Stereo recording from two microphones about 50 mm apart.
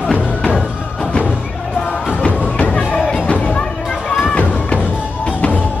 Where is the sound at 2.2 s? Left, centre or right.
Left.